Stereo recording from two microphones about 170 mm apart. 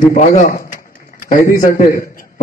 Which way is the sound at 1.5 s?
55° left (ahead or behind).